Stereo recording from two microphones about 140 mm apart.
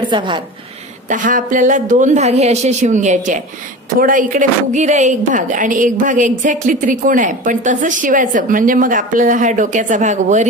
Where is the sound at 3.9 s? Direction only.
85° right; by 10.4 s 60° right (ahead or behind).